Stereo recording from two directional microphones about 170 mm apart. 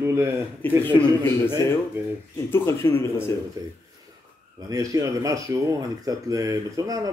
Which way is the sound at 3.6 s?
20° right (ahead or behind).